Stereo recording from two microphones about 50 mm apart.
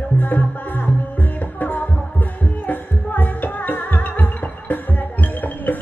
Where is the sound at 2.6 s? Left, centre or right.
Left.